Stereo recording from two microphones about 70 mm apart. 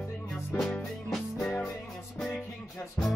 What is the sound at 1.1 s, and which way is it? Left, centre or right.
Music, centre.